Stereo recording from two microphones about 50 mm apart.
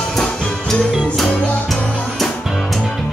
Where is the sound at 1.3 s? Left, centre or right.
Left.